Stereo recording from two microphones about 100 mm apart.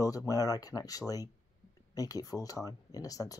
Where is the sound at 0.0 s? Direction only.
35° left (ahead or behind).